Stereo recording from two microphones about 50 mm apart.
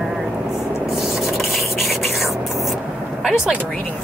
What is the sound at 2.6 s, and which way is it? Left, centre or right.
Vehicle, centre.